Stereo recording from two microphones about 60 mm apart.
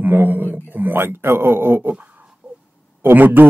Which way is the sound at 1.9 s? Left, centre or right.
Right.